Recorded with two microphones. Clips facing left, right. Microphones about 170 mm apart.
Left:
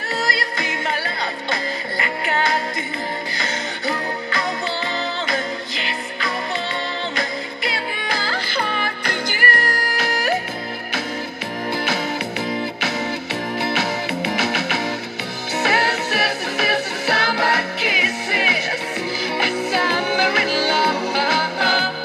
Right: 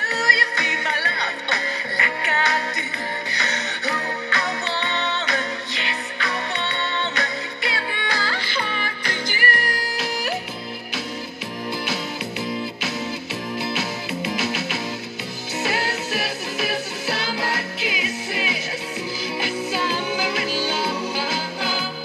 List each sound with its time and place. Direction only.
6.6 s music: 35° left (ahead or behind)
8.5 s music: 45° left (ahead or behind)
11.7 s music: 60° left (ahead or behind)
13.6 s music: 65° left (ahead or behind)